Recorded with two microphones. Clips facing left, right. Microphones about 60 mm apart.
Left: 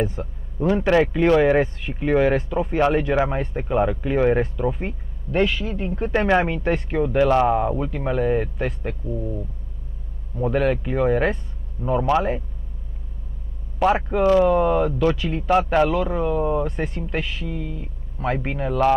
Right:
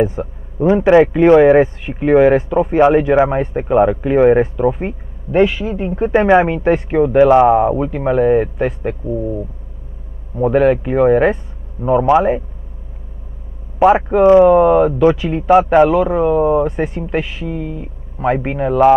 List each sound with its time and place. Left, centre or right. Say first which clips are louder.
0.0 s a man's voice: right 8 dB; centre
13.7 s speech: right 8 dB; centre